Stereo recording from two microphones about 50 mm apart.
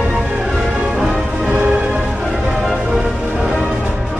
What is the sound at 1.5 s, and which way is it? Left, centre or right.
Music, centre.